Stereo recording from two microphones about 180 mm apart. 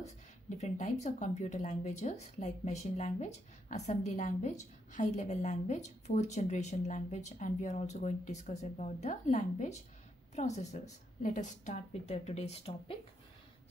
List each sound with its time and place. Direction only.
0.6 s speech: 40° left (ahead or behind)